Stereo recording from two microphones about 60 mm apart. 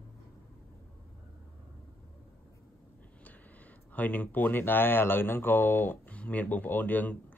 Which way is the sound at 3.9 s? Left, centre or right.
Left.